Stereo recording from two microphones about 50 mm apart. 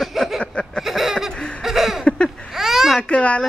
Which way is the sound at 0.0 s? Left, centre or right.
Centre.